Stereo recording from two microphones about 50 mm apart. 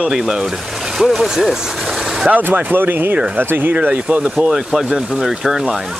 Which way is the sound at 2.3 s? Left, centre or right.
Right.